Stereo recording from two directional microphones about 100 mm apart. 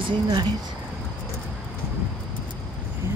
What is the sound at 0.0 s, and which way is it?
Speech, 50° right (ahead or behind).